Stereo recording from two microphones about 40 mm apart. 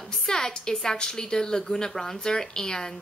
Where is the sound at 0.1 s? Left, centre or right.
Centre.